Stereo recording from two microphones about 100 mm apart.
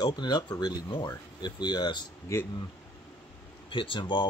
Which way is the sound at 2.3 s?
25° left (ahead or behind).